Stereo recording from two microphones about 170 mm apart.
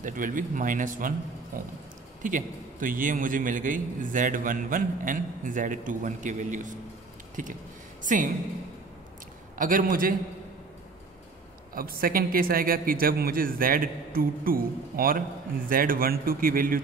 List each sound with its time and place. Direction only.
0.0 s a man's voice: 50° right (ahead or behind)
9.6 s a man's voice: 55° right (ahead or behind)
11.7 s speech: 60° right (ahead or behind)